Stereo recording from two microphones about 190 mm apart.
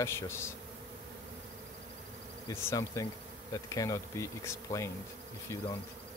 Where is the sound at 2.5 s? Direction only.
15° left (ahead or behind).